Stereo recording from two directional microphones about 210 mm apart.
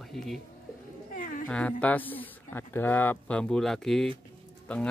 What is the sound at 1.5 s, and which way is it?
Speech, 5° left (ahead or behind).